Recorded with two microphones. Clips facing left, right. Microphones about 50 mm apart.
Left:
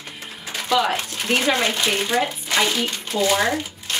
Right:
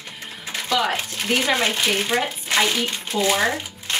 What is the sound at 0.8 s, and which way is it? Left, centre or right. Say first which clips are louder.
Speech: left 1 dB; centre.